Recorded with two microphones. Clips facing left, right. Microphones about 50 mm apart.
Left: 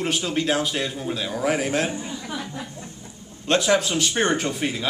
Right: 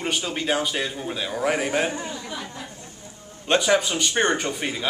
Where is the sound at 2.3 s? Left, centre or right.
Centre.